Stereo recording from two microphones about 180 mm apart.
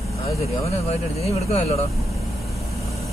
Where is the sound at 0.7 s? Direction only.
35° left (ahead or behind).